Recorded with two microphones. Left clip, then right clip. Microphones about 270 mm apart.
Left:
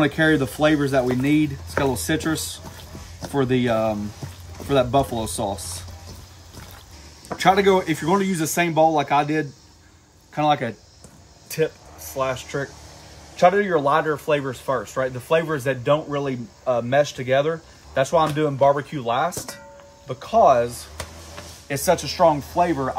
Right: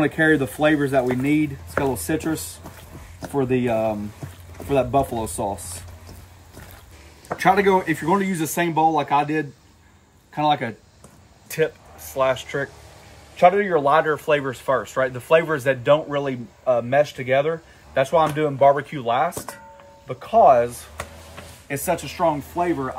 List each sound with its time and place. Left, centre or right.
0.0 s speech: centre
7.2 s speech: centre
21.6 s speech: left